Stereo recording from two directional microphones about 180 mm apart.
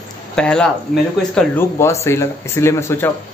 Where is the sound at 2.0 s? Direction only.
15° left (ahead or behind).